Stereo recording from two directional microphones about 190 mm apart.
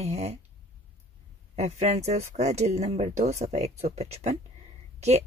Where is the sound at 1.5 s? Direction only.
35° right (ahead or behind).